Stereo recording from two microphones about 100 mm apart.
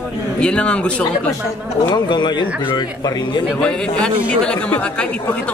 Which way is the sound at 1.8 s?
45° left (ahead or behind).